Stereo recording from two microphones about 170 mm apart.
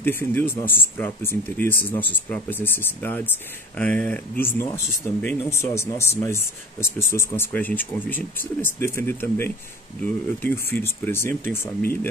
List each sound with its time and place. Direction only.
0.0 s speech: 10° left (ahead or behind)